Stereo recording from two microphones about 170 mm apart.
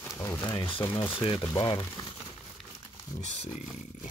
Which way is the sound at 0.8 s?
15° left (ahead or behind).